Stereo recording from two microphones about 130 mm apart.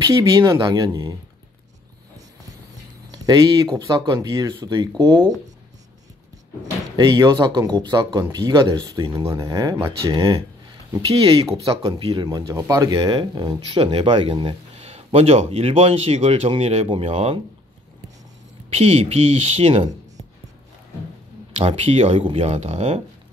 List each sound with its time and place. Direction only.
0.0 s speech: 25° right (ahead or behind)
3.1 s speech: 35° right (ahead or behind)
7.0 s speech: 35° right (ahead or behind); by 17.4 s 55° right (ahead or behind)
18.8 s speech: 55° right (ahead or behind)
21.5 s speech: 50° right (ahead or behind)